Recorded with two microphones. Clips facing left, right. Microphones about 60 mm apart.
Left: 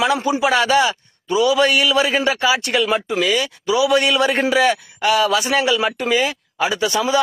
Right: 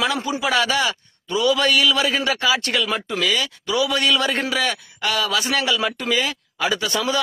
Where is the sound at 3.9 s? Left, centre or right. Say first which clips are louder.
Left 4 dB; left.